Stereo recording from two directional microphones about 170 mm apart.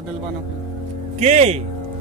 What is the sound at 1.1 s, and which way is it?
Speech, 40° right (ahead or behind).